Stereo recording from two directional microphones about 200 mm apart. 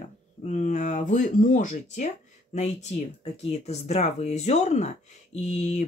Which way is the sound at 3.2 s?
30° left (ahead or behind).